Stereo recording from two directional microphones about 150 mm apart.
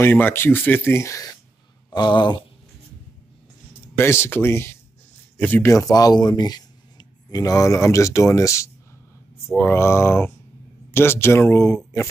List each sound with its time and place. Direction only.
0.0 s speech: 15° left (ahead or behind)
2.0 s a sound: 30° left (ahead or behind)
3.9 s speech: 15° left (ahead or behind)